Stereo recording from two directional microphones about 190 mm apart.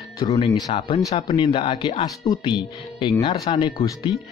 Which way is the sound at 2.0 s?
20° left (ahead or behind).